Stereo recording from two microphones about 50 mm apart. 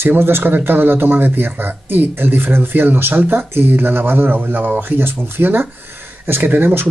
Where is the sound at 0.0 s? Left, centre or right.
Right.